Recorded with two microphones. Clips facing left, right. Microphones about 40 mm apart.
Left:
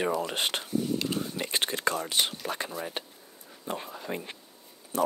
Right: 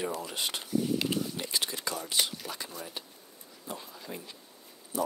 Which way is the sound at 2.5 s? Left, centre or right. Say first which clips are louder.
Left 7 dB; left.